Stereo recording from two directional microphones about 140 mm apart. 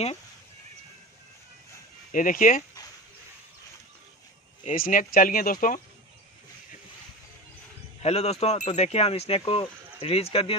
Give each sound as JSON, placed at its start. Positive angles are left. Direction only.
{"t": 2.1, "sound": "speech", "side_deg": 75}
{"t": 4.8, "sound": "speech", "side_deg": 90}
{"t": 8.0, "sound": "speech", "side_deg": 50}